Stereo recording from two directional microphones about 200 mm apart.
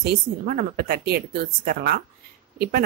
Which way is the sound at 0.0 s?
50° right (ahead or behind).